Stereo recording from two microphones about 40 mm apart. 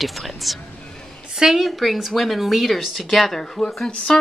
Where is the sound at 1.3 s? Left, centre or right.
Centre.